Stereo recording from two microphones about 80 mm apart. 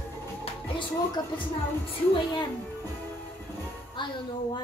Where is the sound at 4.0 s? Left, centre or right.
Left.